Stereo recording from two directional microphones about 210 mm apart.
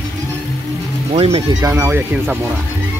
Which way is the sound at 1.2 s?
30° right (ahead or behind).